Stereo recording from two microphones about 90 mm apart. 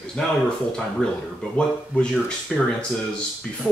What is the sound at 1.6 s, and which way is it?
Speech, 10° left (ahead or behind).